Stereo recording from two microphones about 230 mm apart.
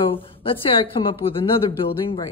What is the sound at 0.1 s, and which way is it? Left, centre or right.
A woman's voice, left.